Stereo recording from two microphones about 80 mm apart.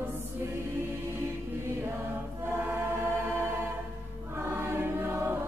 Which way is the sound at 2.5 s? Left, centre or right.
Right.